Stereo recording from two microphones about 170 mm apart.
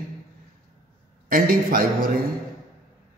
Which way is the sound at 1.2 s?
60° right (ahead or behind).